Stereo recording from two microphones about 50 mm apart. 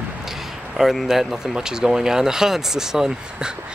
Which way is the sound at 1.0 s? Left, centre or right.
Centre.